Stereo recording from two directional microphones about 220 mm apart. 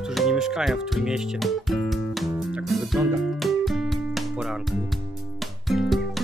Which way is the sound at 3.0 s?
Centre (ahead or behind).